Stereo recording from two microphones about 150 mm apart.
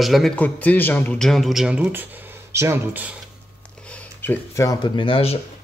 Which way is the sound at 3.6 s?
10° left (ahead or behind).